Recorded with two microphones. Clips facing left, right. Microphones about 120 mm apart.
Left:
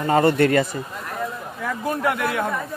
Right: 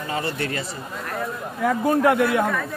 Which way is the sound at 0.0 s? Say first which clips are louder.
Left 10 dB; 50° left (ahead or behind).